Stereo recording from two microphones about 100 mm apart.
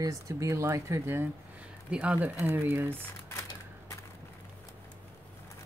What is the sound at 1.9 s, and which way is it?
Speech, 15° right (ahead or behind).